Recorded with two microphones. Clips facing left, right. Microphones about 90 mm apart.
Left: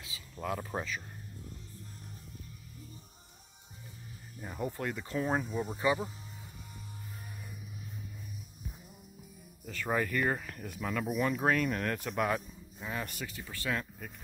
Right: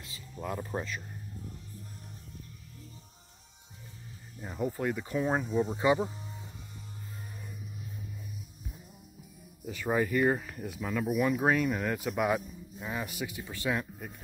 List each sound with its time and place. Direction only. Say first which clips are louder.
0.0 s speech: even; centre (ahead or behind)
4.4 s speech: right 4 dB; 5° right (ahead or behind)
5.8 s speech: right 3 dB; 20° right (ahead or behind)
9.7 s speech: right 3 dB; 10° right (ahead or behind)